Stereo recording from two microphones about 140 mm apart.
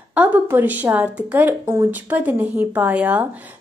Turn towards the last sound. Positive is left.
turn(degrees=-10)  # may be behind; listen again after turning